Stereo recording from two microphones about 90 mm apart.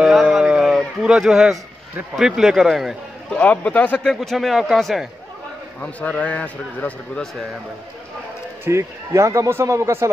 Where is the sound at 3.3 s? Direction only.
15° left (ahead or behind).